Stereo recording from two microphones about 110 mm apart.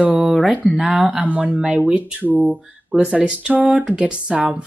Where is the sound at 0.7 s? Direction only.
10° right (ahead or behind).